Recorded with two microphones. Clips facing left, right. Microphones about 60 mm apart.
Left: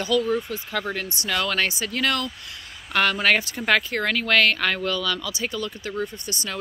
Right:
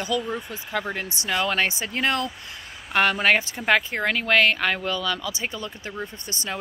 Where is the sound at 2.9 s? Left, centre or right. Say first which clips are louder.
Right 1 dB; right.